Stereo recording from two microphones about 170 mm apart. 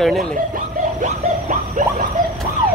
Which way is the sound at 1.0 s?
50° right (ahead or behind).